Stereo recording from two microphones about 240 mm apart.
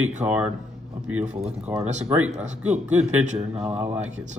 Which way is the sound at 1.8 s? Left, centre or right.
Right.